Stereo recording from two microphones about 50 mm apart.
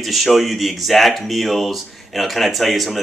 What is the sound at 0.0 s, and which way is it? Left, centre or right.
Speech, centre.